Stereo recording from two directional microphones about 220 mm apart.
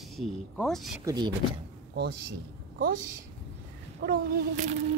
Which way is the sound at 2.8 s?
40° right (ahead or behind).